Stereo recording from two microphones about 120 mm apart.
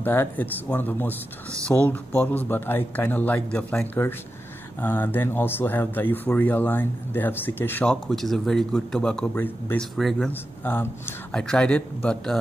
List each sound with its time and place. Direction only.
0.0 s speech: 15° left (ahead or behind)
11.3 s speech: 5° left (ahead or behind)